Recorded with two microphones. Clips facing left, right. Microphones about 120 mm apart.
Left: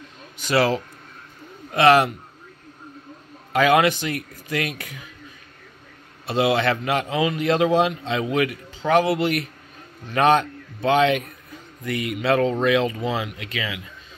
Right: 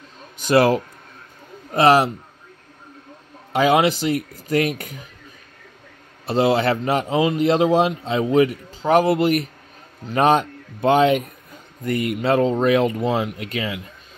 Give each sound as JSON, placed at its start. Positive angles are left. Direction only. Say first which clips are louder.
{"t": 0.4, "sound": "speech", "louder": "right 4 dB", "side_deg": -50}
{"t": 1.7, "sound": "a man's voice", "louder": "right 1 dB", "side_deg": -35}
{"t": 3.5, "sound": "a man's voice", "louder": "right 1 dB", "side_deg": -30}
{"t": 6.2, "sound": "a man's voice", "louder": "right 2 dB", "side_deg": -40}